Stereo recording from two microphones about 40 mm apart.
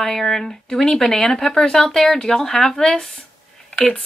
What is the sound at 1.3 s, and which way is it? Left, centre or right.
Speech, centre.